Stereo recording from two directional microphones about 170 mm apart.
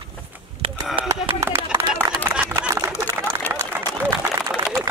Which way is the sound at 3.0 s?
10° left (ahead or behind).